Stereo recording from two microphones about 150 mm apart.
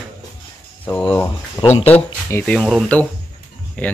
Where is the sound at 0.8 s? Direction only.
10° left (ahead or behind).